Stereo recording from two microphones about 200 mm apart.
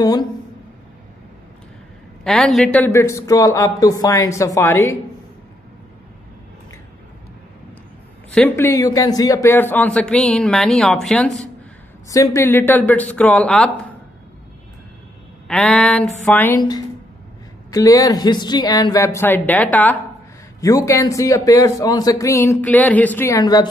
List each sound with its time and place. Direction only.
0.0 s a woman's voice: 20° left (ahead or behind)
2.2 s a man's voice: centre (ahead or behind)
8.3 s a man's voice: 10° left (ahead or behind)
12.1 s a man's voice: 15° left (ahead or behind)
15.4 s a man's voice: 5° left (ahead or behind); by 23.7 s 20° left (ahead or behind)